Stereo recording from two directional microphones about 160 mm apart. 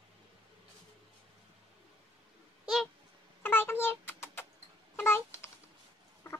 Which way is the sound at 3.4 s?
15° left (ahead or behind).